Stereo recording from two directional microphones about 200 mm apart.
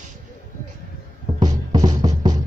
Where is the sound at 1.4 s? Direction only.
20° right (ahead or behind).